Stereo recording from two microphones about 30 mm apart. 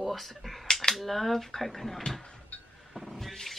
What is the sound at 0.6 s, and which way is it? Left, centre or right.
Cap gun, centre.